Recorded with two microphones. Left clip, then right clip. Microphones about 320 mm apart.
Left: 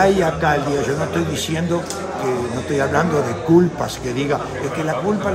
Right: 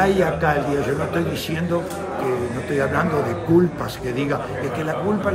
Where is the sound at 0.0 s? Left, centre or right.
Centre.